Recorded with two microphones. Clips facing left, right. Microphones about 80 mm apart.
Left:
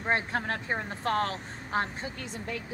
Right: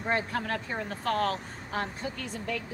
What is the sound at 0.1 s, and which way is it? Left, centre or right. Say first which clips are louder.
A woman's voice: left 1 dB; left.